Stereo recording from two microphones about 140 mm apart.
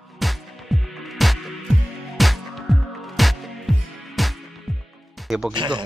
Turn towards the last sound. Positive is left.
turn(degrees=-35)  # may be behind; listen again after turning